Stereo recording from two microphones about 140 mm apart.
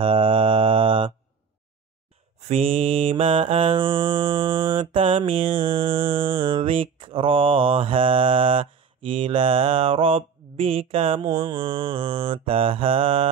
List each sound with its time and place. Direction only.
0.0 s mantra: 35° right (ahead or behind)
2.4 s mantra: 45° right (ahead or behind)